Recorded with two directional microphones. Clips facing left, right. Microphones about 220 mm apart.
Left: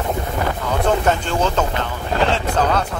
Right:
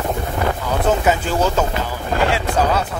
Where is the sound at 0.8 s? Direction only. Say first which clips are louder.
Right 1 dB; 5° right (ahead or behind).